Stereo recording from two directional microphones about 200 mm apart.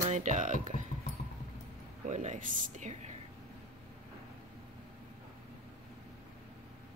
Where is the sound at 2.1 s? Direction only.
35° right (ahead or behind).